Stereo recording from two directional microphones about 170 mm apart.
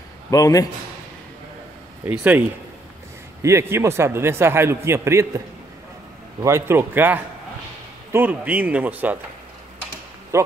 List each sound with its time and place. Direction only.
0.3 s a man's voice: 20° left (ahead or behind)
2.0 s a man's voice: 10° right (ahead or behind)
3.4 s a man's voice: 15° right (ahead or behind)
6.4 s a man's voice: 15° right (ahead or behind)
10.3 s a man's voice: 15° right (ahead or behind)